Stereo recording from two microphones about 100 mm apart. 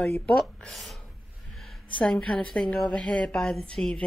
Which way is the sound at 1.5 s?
Centre (ahead or behind).